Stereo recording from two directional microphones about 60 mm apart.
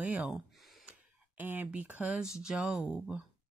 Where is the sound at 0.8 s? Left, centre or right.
Right.